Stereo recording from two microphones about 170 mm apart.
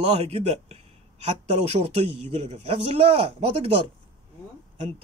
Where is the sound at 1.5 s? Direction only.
35° right (ahead or behind).